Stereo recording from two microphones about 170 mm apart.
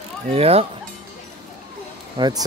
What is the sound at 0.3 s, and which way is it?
Speech, 35° right (ahead or behind).